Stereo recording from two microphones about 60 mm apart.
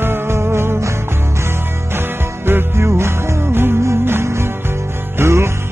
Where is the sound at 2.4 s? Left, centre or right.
Right.